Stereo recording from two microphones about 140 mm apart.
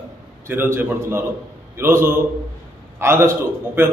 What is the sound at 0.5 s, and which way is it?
A man's voice, 15° right (ahead or behind).